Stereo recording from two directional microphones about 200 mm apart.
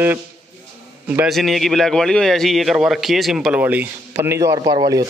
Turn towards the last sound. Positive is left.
turn(degrees=-20)  # may be behind; listen again after turning